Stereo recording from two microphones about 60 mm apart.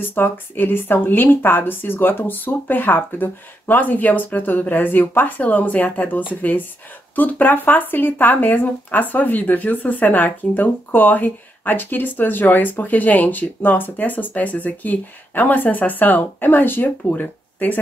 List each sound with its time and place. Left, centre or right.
0.0 s speech: left